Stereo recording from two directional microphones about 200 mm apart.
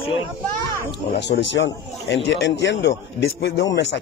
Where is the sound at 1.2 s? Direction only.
60° left (ahead or behind).